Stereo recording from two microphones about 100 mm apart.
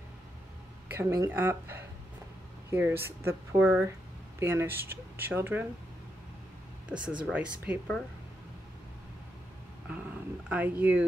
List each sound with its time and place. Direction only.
0.9 s speech: 25° right (ahead or behind)
6.9 s speech: 10° right (ahead or behind)
10.5 s speech: 15° right (ahead or behind)